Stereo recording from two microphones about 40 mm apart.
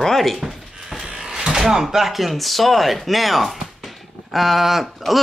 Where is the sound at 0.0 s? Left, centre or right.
Centre.